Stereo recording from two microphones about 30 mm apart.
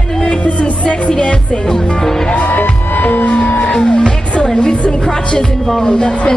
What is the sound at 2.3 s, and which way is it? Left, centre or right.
Music, left.